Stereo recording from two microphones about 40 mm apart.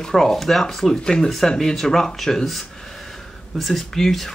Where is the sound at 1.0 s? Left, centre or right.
Centre.